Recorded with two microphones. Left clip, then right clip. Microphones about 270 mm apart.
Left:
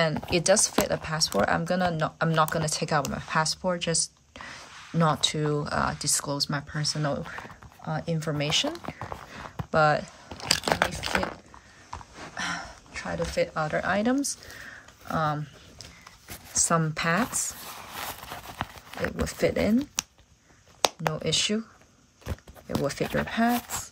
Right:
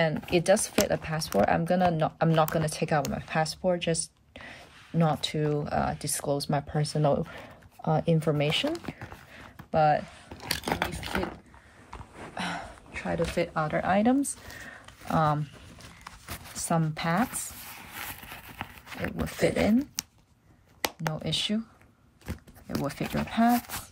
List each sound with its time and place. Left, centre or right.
0.2 s speech: centre
7.9 s speech: centre
10.3 s crunch: left
11.0 s a sound: left
12.4 s speech: centre
14.6 s a sound: centre
16.5 s zipper: centre
20.8 s speech: centre
22.7 s speech: centre